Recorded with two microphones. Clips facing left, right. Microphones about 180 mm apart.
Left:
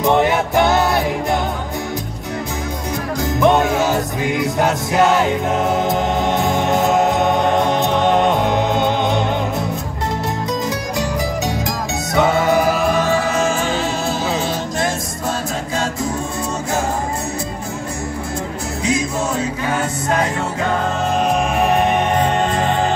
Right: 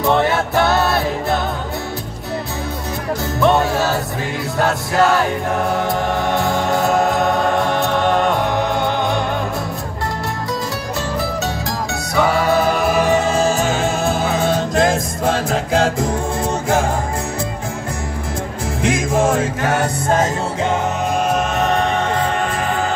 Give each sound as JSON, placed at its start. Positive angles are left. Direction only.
{"t": 0.0, "sound": "music", "side_deg": 15}
{"t": 3.3, "sound": "music", "side_deg": 15}
{"t": 12.2, "sound": "music", "side_deg": 20}
{"t": 12.7, "sound": "music", "side_deg": -5}
{"t": 13.1, "sound": "music", "side_deg": -25}
{"t": 18.9, "sound": "music", "side_deg": -90}
{"t": 21.6, "sound": "music", "side_deg": 15}